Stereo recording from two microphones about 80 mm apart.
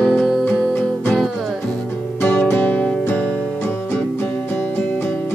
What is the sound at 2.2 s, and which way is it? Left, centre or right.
Music, left.